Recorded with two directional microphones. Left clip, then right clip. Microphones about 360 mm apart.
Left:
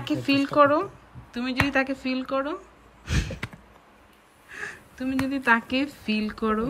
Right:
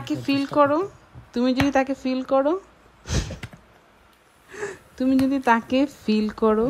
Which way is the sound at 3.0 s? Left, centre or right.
Centre.